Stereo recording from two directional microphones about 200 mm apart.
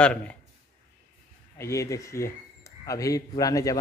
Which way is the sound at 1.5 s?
15° left (ahead or behind).